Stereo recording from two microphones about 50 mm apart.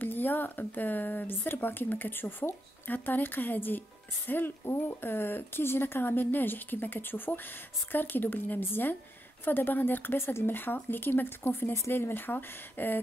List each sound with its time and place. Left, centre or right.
0.0 s a woman's voice: left